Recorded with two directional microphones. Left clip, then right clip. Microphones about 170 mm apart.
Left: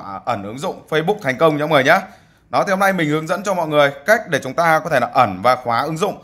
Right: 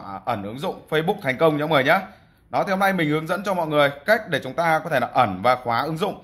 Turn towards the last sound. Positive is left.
turn(degrees=10)  # may be behind; listen again after turning